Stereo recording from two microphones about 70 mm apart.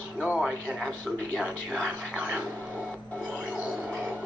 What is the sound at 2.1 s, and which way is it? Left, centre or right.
Speech, centre.